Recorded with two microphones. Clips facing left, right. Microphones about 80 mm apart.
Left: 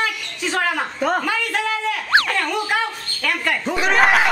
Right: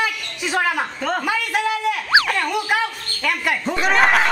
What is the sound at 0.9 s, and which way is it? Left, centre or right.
Speech, centre.